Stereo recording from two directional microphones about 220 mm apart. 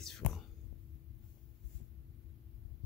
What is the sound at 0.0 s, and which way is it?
Whispering, centre (ahead or behind).